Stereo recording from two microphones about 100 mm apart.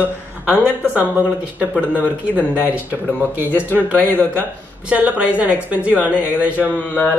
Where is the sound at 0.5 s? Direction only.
15° right (ahead or behind).